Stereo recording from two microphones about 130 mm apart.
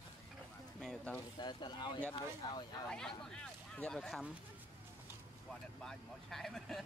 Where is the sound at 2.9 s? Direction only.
5° left (ahead or behind).